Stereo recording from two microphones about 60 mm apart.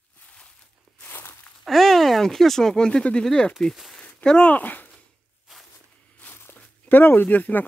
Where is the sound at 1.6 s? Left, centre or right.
Centre.